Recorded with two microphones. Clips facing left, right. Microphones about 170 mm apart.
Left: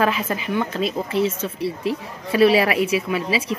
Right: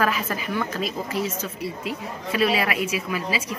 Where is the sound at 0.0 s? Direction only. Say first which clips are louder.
Left 3 dB; 25° left (ahead or behind).